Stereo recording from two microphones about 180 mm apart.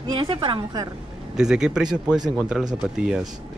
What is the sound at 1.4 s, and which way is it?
Speech, 5° right (ahead or behind).